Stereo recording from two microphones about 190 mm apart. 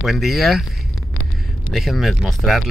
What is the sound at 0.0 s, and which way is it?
Speech, centre (ahead or behind).